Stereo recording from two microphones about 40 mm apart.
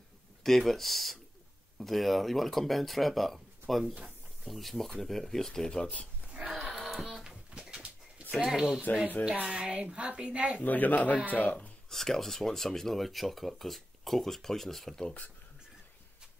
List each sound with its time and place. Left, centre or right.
0.4 s speech: centre
5.8 s speech: left
6.7 s a sound: centre
7.2 s bird: centre
8.4 s speech: centre
8.9 s speech: left
9.2 s speech: right
10.6 s speech: left
11.9 s speech: centre